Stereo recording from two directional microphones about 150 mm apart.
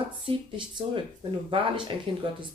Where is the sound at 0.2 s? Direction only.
30° right (ahead or behind).